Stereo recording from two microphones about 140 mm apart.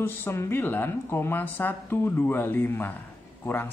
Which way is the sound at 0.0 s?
15° left (ahead or behind).